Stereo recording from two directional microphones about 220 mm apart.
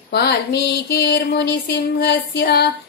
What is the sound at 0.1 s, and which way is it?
Music, 45° left (ahead or behind).